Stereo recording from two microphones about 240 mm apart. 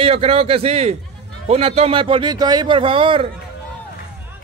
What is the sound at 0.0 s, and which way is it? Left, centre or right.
A man's voice, right.